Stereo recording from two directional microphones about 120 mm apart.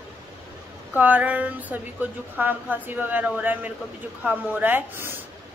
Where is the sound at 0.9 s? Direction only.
15° right (ahead or behind).